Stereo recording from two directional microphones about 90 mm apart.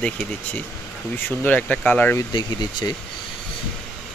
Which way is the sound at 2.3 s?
50° left (ahead or behind).